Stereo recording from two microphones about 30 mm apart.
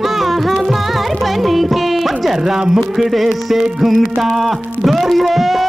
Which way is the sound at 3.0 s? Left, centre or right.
Centre.